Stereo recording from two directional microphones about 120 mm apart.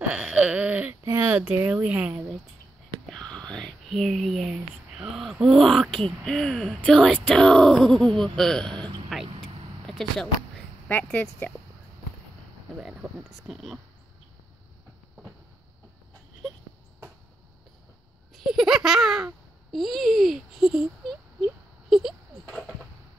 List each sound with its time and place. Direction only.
0.1 s a sound: 10° right (ahead or behind)
1.0 s a sound: 20° right (ahead or behind)
1.4 s speech: 10° right (ahead or behind)
3.1 s whispering: 5° left (ahead or behind)
3.5 s speech: 5° left (ahead or behind)
9.1 s vehicle: centre (ahead or behind)
9.8 s speech: 5° left (ahead or behind)
13.5 s speech: centre (ahead or behind)
18.3 s speech: centre (ahead or behind)
21.8 s a sound: centre (ahead or behind)